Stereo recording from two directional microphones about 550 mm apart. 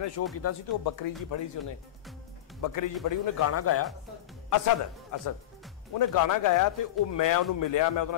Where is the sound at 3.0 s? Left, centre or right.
Left.